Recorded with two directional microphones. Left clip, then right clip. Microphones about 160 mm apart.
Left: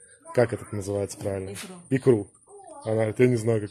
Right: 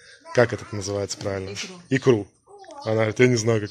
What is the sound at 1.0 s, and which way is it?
Speech, 25° left (ahead or behind).